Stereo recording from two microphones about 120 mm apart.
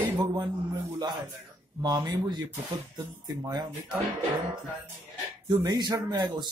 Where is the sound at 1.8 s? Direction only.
35° right (ahead or behind).